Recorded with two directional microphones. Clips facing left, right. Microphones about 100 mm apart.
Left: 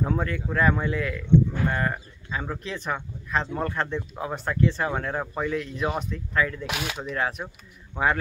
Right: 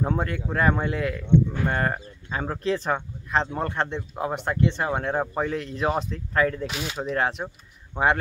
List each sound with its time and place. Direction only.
0.0 s speech: 30° right (ahead or behind)
6.6 s speech: 65° left (ahead or behind)
7.0 s speech: 35° right (ahead or behind)